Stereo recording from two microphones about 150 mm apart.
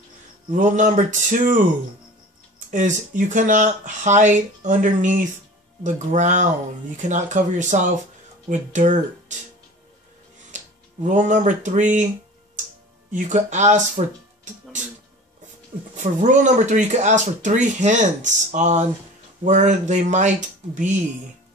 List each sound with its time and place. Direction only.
0.5 s speech: 55° right (ahead or behind)
2.7 s speech: 55° right (ahead or behind)
10.5 s music: 55° right (ahead or behind)
11.1 s speech: 55° right (ahead or behind)
13.1 s speech: 55° right (ahead or behind)
16.0 s speech: 55° right (ahead or behind)